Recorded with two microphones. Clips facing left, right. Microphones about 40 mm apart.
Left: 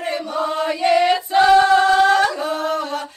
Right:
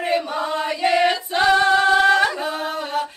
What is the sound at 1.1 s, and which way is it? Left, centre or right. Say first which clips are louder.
Singing: left 5 dB; centre.